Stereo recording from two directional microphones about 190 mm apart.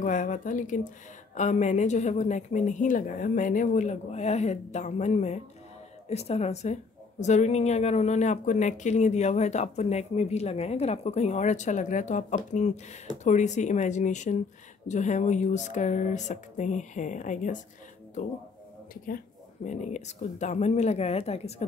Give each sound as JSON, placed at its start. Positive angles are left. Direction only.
{"t": 0.0, "sound": "a woman's voice", "side_deg": 45}
{"t": 19.0, "sound": "a woman's voice", "side_deg": 45}